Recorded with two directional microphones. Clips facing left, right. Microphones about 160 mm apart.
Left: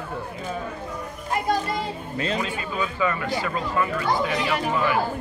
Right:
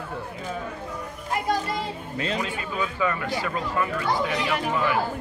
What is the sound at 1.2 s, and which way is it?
Children playing, 45° left (ahead or behind).